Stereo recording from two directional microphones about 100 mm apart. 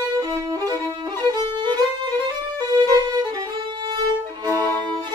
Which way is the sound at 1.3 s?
40° right (ahead or behind).